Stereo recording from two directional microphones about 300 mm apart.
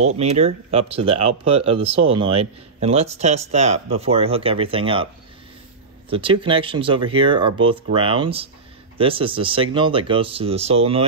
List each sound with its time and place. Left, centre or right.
0.0 s speech: right
6.0 s speech: centre